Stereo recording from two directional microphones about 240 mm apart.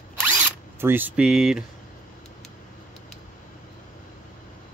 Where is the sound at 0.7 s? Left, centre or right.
Centre.